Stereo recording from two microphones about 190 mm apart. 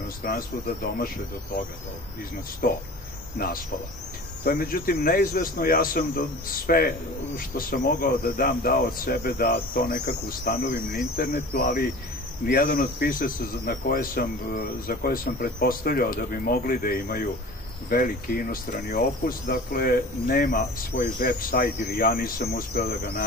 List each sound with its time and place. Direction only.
0.2 s speech: 50° left (ahead or behind)
2.6 s speech: 50° left (ahead or behind)